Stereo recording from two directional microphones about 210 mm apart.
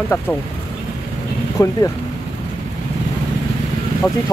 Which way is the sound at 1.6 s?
15° left (ahead or behind).